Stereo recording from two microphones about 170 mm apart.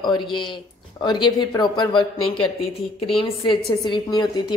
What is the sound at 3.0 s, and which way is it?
Speech, 30° left (ahead or behind).